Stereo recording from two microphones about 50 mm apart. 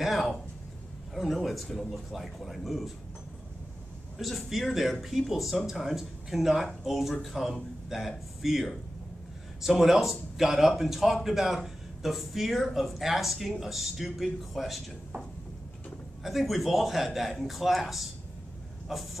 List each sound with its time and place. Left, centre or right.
0.0 s a sound: centre
1.1 s speech: centre
4.2 s speech: centre
16.3 s speech: centre